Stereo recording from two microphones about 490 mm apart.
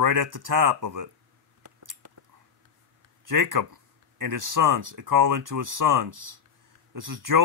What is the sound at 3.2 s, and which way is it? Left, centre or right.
Speech, right.